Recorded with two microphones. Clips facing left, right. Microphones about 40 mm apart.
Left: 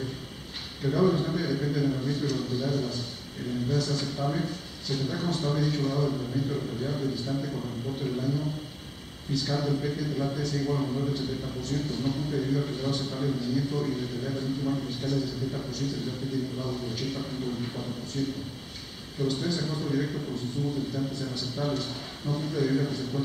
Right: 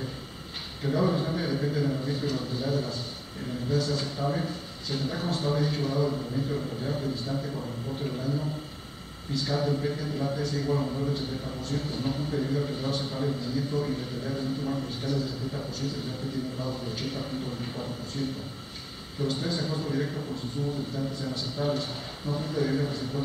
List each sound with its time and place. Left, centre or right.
0.8 s a man's voice: centre
9.3 s a man's voice: centre
19.2 s a man's voice: centre